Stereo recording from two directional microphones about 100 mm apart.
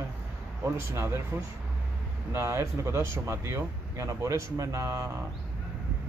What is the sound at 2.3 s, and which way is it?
Speech, 25° right (ahead or behind).